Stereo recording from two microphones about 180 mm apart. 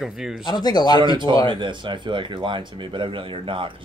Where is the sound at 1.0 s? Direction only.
25° right (ahead or behind).